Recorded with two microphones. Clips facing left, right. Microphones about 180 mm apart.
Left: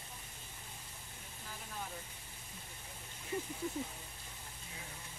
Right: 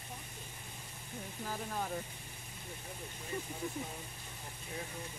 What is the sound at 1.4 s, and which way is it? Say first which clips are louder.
Speech: right 8 dB; 60° right (ahead or behind).